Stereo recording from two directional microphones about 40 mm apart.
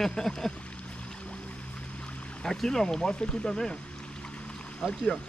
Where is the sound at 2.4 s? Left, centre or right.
Centre.